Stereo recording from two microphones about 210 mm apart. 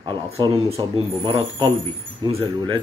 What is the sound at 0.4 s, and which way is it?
Speech, 20° right (ahead or behind).